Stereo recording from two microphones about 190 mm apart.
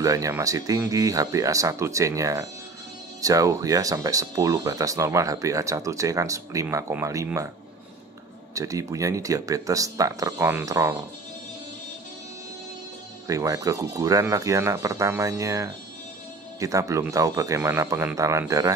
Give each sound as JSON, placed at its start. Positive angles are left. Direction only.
{"t": 0.0, "sound": "speech", "side_deg": -15}
{"t": 8.5, "sound": "speech", "side_deg": -15}
{"t": 13.3, "sound": "speech", "side_deg": -15}